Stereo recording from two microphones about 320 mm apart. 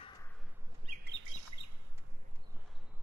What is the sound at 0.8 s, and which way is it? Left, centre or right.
Chirp, right.